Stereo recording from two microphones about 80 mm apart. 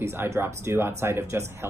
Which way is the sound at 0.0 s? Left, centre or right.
Right.